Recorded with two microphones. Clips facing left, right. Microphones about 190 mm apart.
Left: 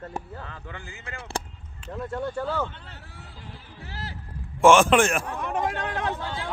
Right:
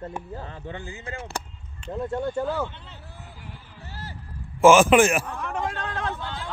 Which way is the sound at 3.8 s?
90° left.